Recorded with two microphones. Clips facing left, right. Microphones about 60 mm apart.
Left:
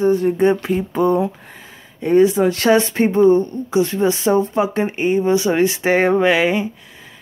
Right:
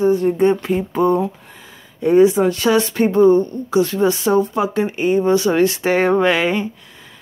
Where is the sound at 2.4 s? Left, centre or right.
Centre.